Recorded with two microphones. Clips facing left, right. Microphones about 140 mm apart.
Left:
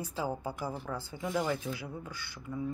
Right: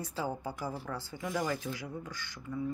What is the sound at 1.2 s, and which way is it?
Speech, 25° left (ahead or behind).